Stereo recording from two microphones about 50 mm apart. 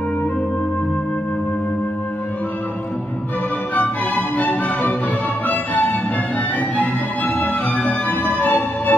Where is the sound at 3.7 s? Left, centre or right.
Left.